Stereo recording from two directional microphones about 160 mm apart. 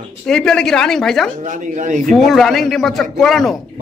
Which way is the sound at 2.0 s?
Centre (ahead or behind).